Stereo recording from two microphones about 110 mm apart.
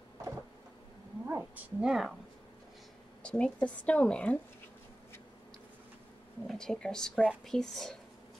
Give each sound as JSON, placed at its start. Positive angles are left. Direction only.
{"t": 1.2, "sound": "roaring cats", "side_deg": -15}
{"t": 1.9, "sound": "speech", "side_deg": 0}
{"t": 3.2, "sound": "speech", "side_deg": 10}
{"t": 6.4, "sound": "speech", "side_deg": 5}